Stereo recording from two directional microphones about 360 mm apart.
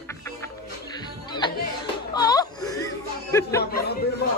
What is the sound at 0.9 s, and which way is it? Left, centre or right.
Music, centre.